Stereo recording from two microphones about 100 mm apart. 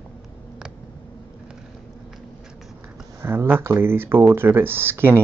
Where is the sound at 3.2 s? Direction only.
25° right (ahead or behind).